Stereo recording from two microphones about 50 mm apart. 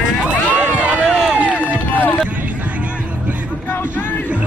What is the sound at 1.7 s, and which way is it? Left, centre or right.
Music, left.